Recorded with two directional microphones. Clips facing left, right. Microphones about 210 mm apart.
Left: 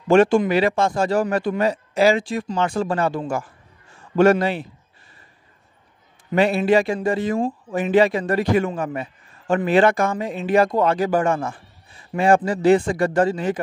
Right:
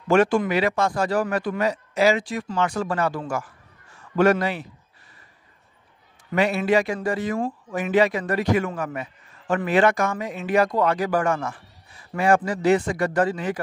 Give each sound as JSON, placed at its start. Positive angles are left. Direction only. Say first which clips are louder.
{"t": 0.1, "sound": "a man's voice", "louder": "left 4 dB", "side_deg": 25}
{"t": 6.3, "sound": "a man's voice", "louder": "left 3 dB", "side_deg": 30}